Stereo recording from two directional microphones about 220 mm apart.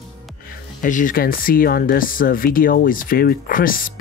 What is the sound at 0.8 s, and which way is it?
Speech, 35° left (ahead or behind).